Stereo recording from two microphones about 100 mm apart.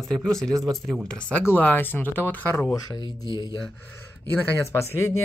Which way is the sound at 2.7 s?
40° left (ahead or behind).